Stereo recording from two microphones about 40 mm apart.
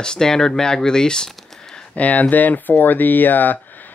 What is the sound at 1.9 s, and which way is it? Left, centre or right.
Speech, left.